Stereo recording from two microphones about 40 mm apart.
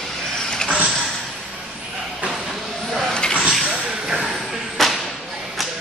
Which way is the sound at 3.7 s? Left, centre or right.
Centre.